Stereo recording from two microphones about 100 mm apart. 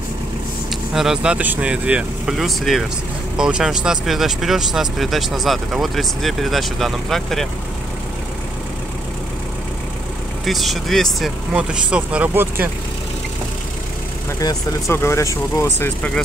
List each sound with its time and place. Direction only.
0.9 s speech: 5° right (ahead or behind)
10.4 s speech: centre (ahead or behind)
11.5 s speech: 10° right (ahead or behind)
14.9 s speech: 25° left (ahead or behind)